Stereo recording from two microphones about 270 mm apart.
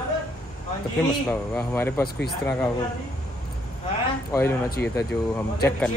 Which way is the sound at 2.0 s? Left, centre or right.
Left.